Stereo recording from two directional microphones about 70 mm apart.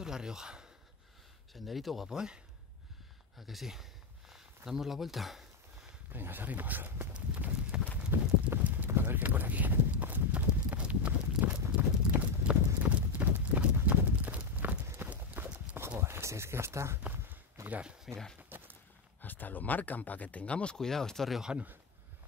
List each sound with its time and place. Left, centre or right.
0.0 s speech: centre
6.1 s speech: right
7.2 s clip-clop: centre
16.0 s a sound: right
17.0 s walk: right
17.6 s speech: centre
18.0 s speech: centre
18.5 s a sound: right
19.2 s speech: left; by 21.4 s centre
21.4 s speech: centre